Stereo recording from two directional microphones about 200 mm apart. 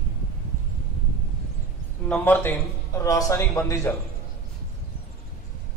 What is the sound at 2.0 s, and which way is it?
A man's voice, 10° left (ahead or behind).